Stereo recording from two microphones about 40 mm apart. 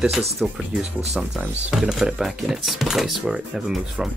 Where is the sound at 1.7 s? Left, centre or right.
Centre.